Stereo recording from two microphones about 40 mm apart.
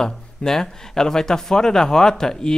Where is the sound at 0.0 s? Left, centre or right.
Centre.